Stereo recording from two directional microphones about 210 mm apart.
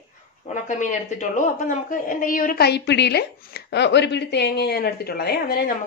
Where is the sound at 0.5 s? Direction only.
35° left (ahead or behind).